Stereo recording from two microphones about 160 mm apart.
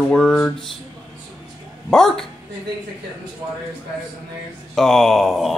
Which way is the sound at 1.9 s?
5° left (ahead or behind).